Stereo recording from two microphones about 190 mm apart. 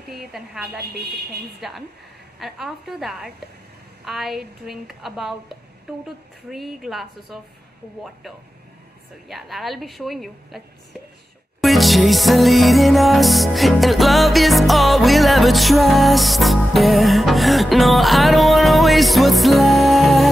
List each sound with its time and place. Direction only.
0.0 s a woman's voice: centre (ahead or behind)
0.7 s speech: 60° right (ahead or behind)
1.6 s a woman's voice: centre (ahead or behind)
9.3 s a woman's voice: centre (ahead or behind)
11.6 s music: centre (ahead or behind)